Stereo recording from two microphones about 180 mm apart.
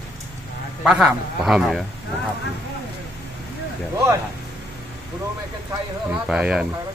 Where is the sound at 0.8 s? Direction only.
5° right (ahead or behind).